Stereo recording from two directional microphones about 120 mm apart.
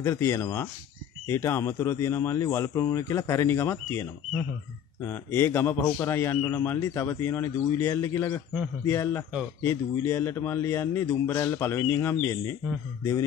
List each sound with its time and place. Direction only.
0.0 s a man's voice: 25° left (ahead or behind)